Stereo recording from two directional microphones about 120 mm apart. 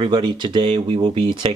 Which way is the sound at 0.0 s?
40° right (ahead or behind).